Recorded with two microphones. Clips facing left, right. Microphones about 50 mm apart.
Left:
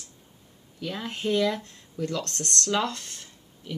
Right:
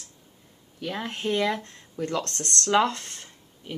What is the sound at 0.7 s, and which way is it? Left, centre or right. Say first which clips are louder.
Speech: right 1 dB; right.